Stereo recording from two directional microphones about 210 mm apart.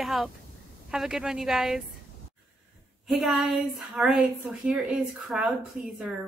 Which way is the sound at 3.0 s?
Centre (ahead or behind).